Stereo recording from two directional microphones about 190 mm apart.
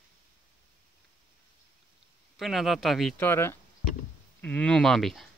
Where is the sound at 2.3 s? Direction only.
Centre (ahead or behind).